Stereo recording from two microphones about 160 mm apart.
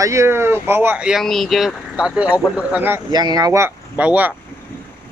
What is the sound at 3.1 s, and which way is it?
Speech, 25° right (ahead or behind).